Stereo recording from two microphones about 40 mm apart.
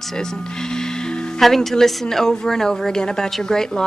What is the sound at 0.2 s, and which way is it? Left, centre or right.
Music, centre.